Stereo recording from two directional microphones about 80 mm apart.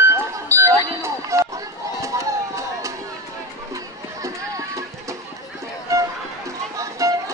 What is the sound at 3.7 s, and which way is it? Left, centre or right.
Music, right.